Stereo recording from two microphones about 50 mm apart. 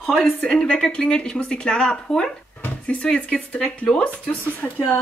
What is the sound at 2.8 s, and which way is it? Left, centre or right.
Speech, left.